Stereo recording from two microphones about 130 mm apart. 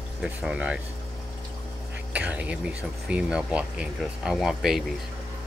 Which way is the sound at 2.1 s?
10° right (ahead or behind).